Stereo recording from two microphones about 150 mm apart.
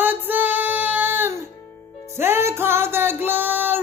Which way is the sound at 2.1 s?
15° right (ahead or behind).